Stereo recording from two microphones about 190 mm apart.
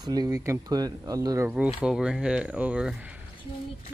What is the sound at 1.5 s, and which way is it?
Speech, 5° right (ahead or behind).